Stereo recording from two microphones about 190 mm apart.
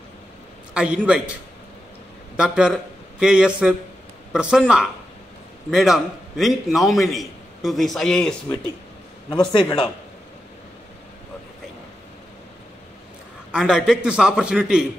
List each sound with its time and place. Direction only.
0.7 s a man's voice: 5° right (ahead or behind)
9.5 s a man's voice: 25° left (ahead or behind)
13.5 s a man's voice: 5° right (ahead or behind)